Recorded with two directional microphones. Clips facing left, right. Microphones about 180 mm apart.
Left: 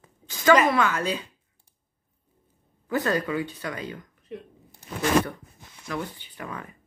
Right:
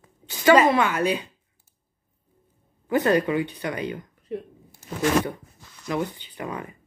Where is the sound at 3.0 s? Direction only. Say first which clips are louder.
Right 5 dB; 20° right (ahead or behind).